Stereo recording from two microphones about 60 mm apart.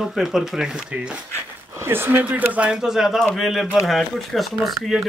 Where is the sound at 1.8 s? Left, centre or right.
Right.